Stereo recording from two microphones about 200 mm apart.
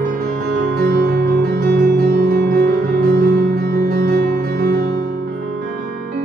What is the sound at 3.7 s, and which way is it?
Music, 50° right (ahead or behind).